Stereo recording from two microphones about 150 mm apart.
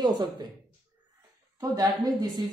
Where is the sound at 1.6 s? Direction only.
25° right (ahead or behind).